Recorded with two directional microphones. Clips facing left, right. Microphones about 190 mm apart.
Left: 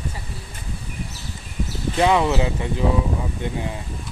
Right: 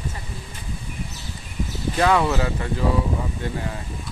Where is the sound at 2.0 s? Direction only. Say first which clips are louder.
Left 1 dB; 20° left (ahead or behind).